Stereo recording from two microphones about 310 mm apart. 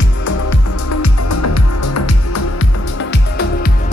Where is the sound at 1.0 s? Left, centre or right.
Left.